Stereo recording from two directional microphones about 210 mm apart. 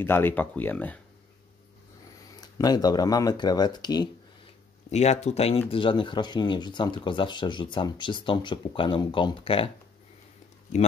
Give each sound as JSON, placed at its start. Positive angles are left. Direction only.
{"t": 0.0, "sound": "speech", "side_deg": 10}
{"t": 2.6, "sound": "speech", "side_deg": 20}
{"t": 4.9, "sound": "speech", "side_deg": 30}